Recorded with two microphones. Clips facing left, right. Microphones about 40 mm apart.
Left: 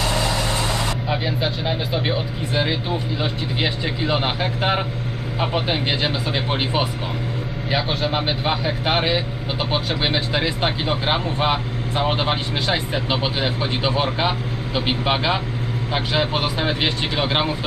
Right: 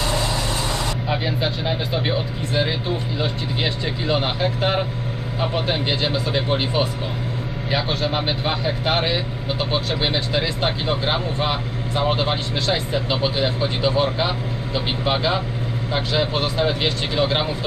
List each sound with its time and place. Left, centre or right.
1.0 s speech: centre
7.7 s speech: centre; by 17.5 s left